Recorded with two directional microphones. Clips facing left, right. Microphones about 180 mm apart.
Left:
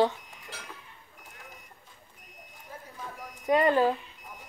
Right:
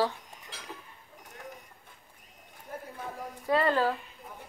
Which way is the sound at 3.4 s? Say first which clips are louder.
Left 3 dB; 20° left (ahead or behind).